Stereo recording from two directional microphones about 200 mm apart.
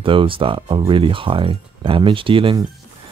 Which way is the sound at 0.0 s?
25° right (ahead or behind).